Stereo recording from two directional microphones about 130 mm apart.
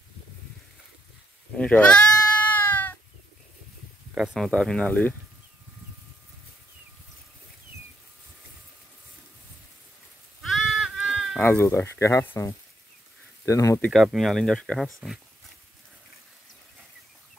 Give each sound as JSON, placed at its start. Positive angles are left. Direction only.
{"t": 1.6, "sound": "speech", "side_deg": 10}
{"t": 2.5, "sound": "cat", "side_deg": 15}
{"t": 4.1, "sound": "speech", "side_deg": -5}
{"t": 4.5, "sound": "speech", "side_deg": 5}
{"t": 10.5, "sound": "goat", "side_deg": 0}
{"t": 11.3, "sound": "speech", "side_deg": 15}
{"t": 13.7, "sound": "speech", "side_deg": 10}